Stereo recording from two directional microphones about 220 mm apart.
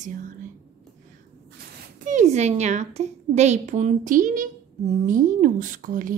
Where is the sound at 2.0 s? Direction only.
35° right (ahead or behind).